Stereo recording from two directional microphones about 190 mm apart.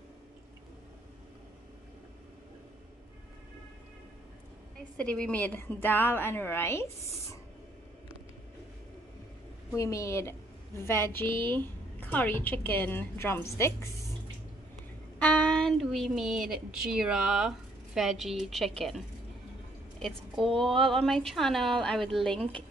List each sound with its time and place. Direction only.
4.9 s a woman's voice: 5° left (ahead or behind)
9.7 s a woman's voice: 15° left (ahead or behind)
15.1 s a woman's voice: 5° left (ahead or behind)
20.0 s a woman's voice: 5° left (ahead or behind)